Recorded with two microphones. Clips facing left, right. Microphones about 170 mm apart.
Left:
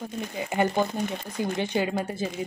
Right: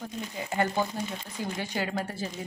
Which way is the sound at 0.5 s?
15° left (ahead or behind).